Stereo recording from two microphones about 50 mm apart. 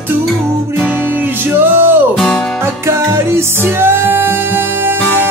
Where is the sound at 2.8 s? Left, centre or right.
Right.